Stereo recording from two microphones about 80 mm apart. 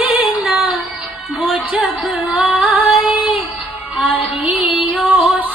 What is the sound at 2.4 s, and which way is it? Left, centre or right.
Music, right.